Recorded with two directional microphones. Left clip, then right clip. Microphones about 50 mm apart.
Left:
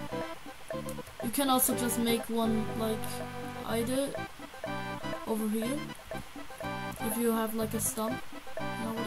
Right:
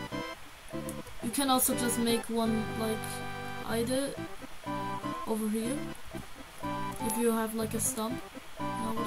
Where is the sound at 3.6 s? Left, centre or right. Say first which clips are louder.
Even; centre.